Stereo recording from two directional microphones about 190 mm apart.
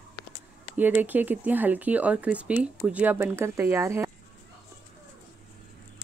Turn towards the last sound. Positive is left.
turn(degrees=-15)  # may be behind; listen again after turning